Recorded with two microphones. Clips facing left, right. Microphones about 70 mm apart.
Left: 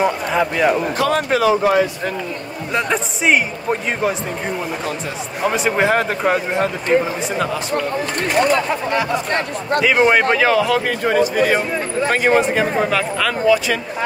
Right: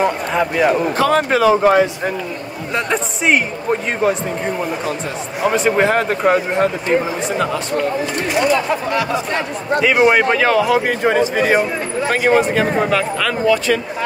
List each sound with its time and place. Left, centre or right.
0.0 s speech: centre
0.9 s speech: right
2.7 s speech: centre
5.4 s speech: centre
8.2 s speech: left
9.8 s speech: centre
10.9 s a man's voice: right
12.5 s speech: centre